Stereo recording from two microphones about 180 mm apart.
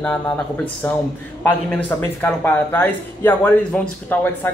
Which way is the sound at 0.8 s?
15° left (ahead or behind).